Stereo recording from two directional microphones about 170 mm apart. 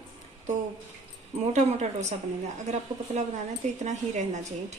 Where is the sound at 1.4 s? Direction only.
40° right (ahead or behind).